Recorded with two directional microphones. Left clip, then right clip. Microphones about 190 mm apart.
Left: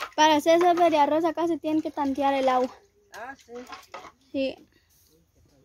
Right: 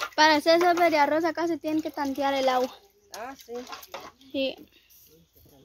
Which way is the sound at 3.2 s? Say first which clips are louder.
Right 1 dB; 15° right (ahead or behind).